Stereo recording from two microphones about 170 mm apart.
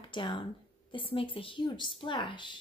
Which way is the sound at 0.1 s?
30° left (ahead or behind).